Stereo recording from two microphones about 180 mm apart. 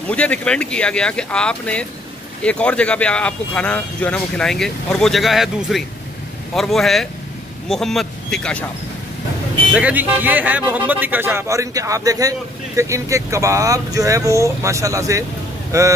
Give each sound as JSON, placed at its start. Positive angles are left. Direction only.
{"t": 0.1, "sound": "speech", "side_deg": 5}
{"t": 9.7, "sound": "speech", "side_deg": -5}